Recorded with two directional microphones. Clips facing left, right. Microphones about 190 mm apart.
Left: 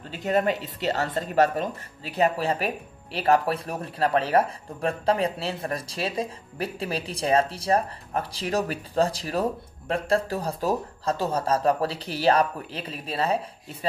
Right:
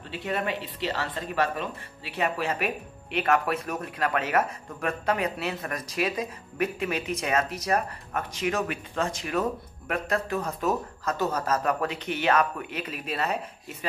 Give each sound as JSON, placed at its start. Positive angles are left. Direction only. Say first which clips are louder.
{"t": 0.1, "sound": "speech", "louder": "left 6 dB", "side_deg": 40}